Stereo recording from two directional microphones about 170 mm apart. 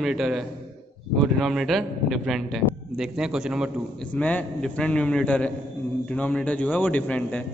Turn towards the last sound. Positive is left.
turn(degrees=5)  # may be behind; listen again after turning